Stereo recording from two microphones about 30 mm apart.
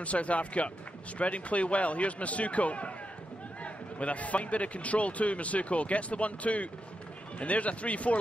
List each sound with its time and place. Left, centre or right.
0.0 s speech: left